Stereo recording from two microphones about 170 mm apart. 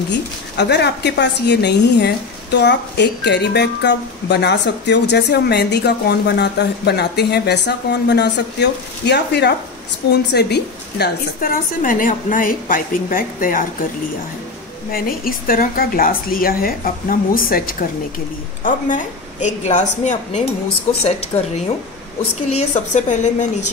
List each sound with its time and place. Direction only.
0.6 s a woman's voice: 90° left; by 13.7 s 55° left (ahead or behind)
14.9 s a woman's voice: 60° left (ahead or behind)